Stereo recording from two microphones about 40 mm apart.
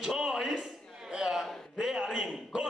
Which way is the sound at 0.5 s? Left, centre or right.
Centre.